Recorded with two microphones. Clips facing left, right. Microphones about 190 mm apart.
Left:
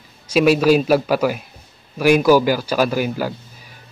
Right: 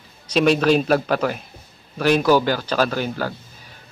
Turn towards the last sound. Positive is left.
turn(degrees=10)  # may be behind; listen again after turning